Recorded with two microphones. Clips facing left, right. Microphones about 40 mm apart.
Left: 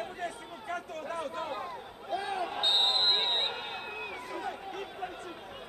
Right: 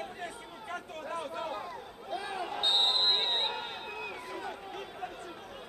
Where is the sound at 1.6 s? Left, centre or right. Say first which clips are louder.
Left 1 dB; left.